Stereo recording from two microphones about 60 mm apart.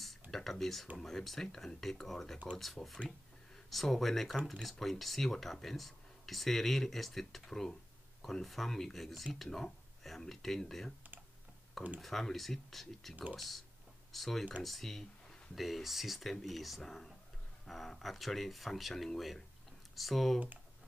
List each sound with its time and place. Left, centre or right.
0.3 s speech: centre
12.0 s speech: centre
13.1 s speech: right
13.4 s speech: centre